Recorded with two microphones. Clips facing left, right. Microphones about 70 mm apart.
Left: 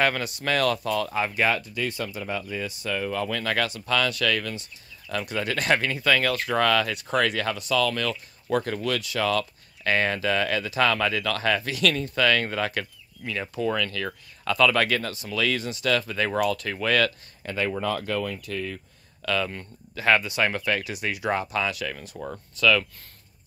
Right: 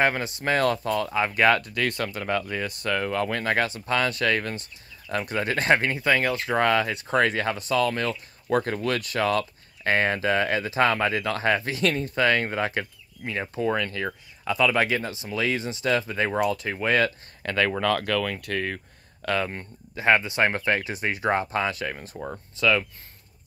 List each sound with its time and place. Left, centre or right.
0.0 s speech: right
17.4 s speech: right
19.2 s speech: right
20.0 s speech: right